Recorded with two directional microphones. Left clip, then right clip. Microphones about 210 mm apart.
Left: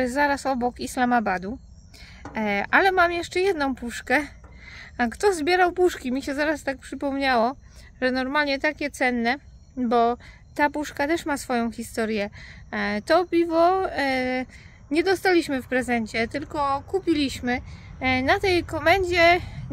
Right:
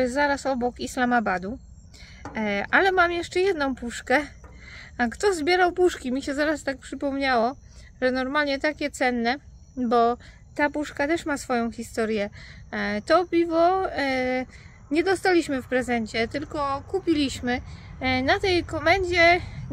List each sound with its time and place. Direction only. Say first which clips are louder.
0.0 s speech: even; 15° left (ahead or behind)